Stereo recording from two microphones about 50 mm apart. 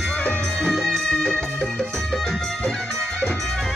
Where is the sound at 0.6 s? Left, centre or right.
Centre.